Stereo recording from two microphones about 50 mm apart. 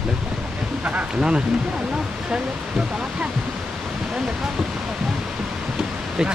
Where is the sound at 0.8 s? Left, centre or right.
Right.